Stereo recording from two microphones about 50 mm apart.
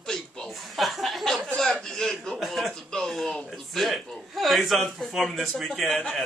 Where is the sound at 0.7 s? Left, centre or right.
Centre.